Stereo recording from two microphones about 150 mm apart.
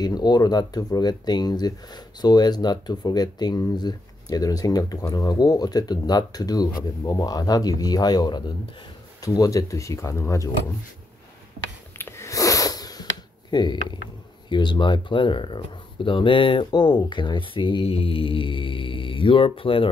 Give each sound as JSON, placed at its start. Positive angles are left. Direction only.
{"t": 0.0, "sound": "speech", "side_deg": 25}
{"t": 12.0, "sound": "a sound", "side_deg": 20}
{"t": 13.5, "sound": "speech", "side_deg": 30}